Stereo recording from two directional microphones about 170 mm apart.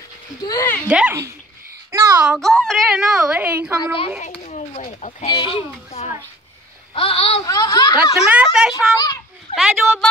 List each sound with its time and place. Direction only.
0.4 s speech: 20° left (ahead or behind)
0.8 s speech: 10° right (ahead or behind)
1.9 s a sound: 20° right (ahead or behind)
2.2 s a woman's voice: centre (ahead or behind)
4.4 s a sound: 45° left (ahead or behind)
5.3 s a child's voice: 30° left (ahead or behind)
7.4 s speech: 20° left (ahead or behind)
8.4 s a woman's voice: 5° right (ahead or behind)
8.7 s children playing: 20° left (ahead or behind)
9.6 s a woman's voice: centre (ahead or behind)